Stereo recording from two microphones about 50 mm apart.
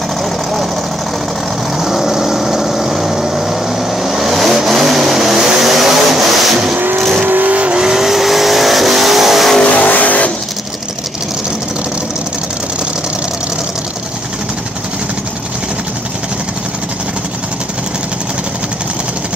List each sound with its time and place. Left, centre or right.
0.2 s vehicle: centre
1.8 s vehicle: centre
6.7 s vehicle: right
7.0 s vehicle: centre
7.2 s vehicle: right
7.8 s vehicle: centre
9.6 s vehicle: left